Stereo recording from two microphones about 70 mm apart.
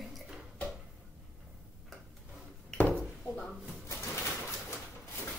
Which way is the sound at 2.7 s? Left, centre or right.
Left.